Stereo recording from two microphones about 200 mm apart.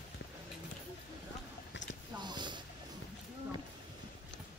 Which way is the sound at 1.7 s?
65° left (ahead or behind).